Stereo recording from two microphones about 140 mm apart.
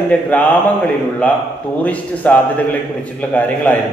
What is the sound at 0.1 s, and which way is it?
Speech, 10° left (ahead or behind).